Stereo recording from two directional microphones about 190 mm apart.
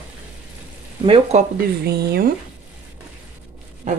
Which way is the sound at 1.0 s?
30° right (ahead or behind).